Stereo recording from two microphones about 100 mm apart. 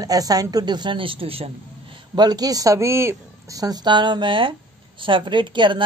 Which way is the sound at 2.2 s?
40° right (ahead or behind).